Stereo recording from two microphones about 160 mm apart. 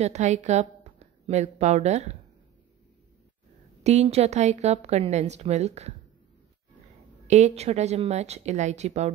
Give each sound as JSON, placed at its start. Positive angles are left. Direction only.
{"t": 0.0, "sound": "a woman's voice", "side_deg": -45}
{"t": 3.8, "sound": "a woman's voice", "side_deg": -45}
{"t": 7.2, "sound": "a woman's voice", "side_deg": -45}